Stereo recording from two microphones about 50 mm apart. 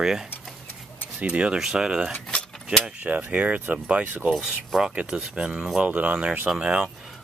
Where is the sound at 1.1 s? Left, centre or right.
Right.